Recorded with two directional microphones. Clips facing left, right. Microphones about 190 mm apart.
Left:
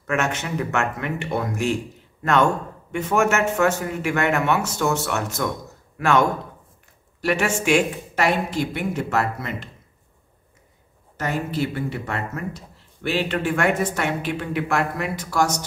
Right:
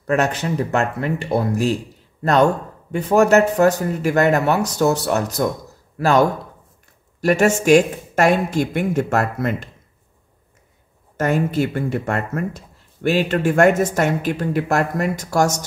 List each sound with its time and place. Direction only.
0.0 s speech: 35° right (ahead or behind)
2.9 s speech: 35° right (ahead or behind); by 9.7 s 50° right (ahead or behind)
11.1 s speech: 50° right (ahead or behind)